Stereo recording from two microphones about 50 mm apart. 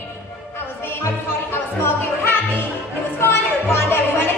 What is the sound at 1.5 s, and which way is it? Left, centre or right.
Music, left.